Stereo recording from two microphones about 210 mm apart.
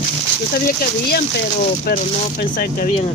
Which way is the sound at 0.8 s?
45° left (ahead or behind).